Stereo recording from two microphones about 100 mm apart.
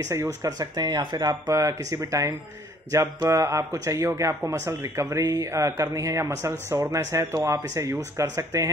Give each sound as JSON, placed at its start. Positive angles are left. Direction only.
{"t": 0.0, "sound": "speech", "side_deg": -30}